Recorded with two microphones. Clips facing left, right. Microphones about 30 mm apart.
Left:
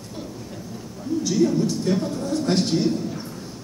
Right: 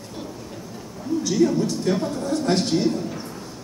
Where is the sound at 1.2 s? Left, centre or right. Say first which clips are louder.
Even; centre.